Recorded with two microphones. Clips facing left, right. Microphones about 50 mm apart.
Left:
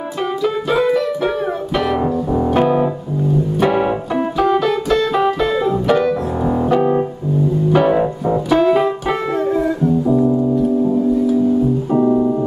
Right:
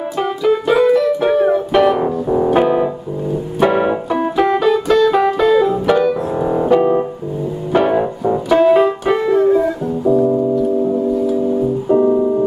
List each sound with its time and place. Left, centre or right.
0.7 s music: centre
3.5 s keyboard: centre
4.6 s music: centre
5.1 s piano: centre
7.7 s keyboard: centre
11.9 s music: centre